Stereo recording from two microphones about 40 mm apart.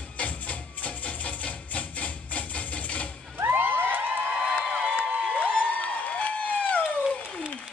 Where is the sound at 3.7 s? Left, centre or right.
Right.